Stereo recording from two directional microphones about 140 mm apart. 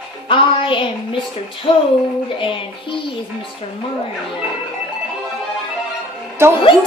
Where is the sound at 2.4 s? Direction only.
35° left (ahead or behind).